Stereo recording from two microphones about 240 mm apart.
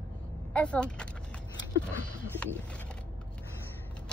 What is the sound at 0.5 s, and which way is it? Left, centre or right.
Speech, centre.